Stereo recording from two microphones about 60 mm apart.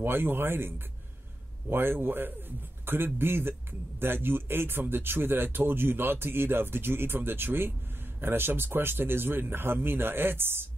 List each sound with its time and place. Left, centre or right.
0.0 s speech: right